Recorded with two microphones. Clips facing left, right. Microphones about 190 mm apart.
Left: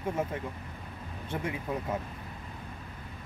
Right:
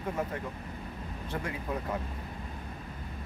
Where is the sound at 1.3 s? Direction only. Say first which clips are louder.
Left 2 dB; 20° left (ahead or behind).